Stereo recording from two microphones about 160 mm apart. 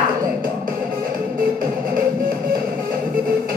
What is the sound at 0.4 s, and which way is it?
Music, 65° right (ahead or behind).